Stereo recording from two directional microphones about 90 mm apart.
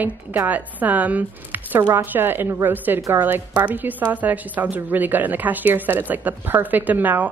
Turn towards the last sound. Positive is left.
turn(degrees=-20)  # may be behind; listen again after turning